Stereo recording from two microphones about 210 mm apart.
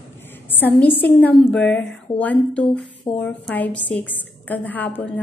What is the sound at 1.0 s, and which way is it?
A woman's voice, 5° left (ahead or behind).